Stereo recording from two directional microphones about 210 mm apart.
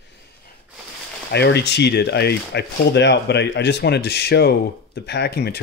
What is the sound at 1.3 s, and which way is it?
Speech, 55° left (ahead or behind).